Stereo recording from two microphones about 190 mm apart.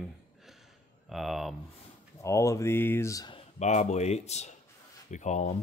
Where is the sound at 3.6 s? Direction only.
40° left (ahead or behind).